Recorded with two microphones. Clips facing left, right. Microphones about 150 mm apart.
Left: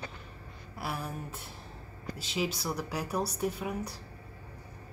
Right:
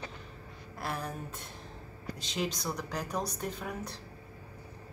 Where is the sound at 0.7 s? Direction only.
5° left (ahead or behind).